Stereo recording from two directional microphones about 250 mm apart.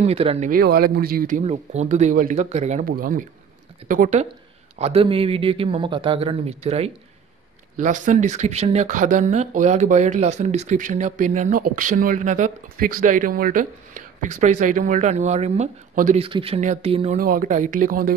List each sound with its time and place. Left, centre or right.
0.0 s speech: right